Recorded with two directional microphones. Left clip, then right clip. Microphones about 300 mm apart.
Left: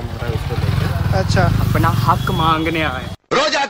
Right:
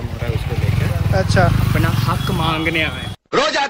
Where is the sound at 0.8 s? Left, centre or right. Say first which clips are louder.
Right 2 dB; centre.